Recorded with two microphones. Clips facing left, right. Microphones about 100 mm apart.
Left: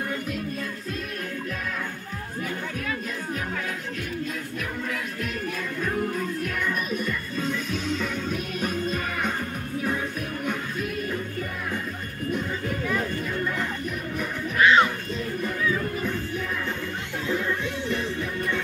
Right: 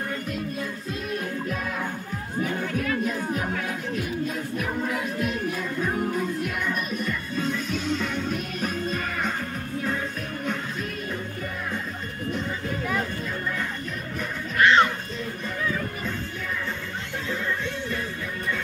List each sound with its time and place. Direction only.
4.6 s music: 20° right (ahead or behind); by 9.3 s 5° left (ahead or behind)
10.4 s music: 10° left (ahead or behind)
14.6 s music: 5° left (ahead or behind)